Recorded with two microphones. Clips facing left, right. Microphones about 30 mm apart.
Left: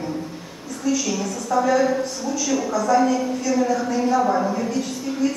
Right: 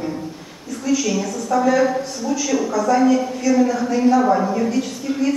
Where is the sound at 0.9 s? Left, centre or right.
Centre.